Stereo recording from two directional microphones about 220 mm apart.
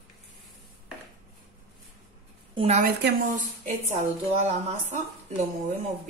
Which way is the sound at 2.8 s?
40° right (ahead or behind).